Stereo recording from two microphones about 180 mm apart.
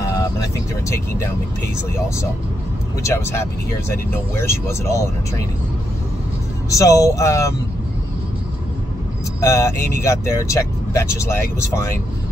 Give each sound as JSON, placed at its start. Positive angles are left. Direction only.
{"t": 0.0, "sound": "speech", "side_deg": 20}
{"t": 3.0, "sound": "speech", "side_deg": 15}
{"t": 6.7, "sound": "speech", "side_deg": 20}
{"t": 9.4, "sound": "speech", "side_deg": 15}